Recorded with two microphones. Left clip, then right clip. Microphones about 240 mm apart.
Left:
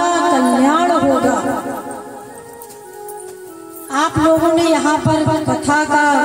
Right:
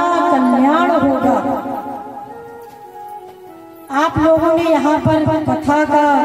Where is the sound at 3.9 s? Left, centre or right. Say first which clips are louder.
Right 1 dB; right.